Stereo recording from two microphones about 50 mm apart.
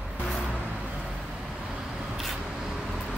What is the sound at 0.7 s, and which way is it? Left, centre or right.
Vehicle, right.